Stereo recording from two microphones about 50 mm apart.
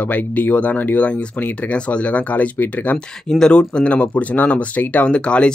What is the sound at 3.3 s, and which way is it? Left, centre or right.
Speech, centre.